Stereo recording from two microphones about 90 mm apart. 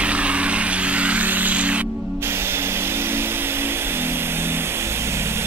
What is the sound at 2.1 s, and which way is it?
Tools, 25° right (ahead or behind).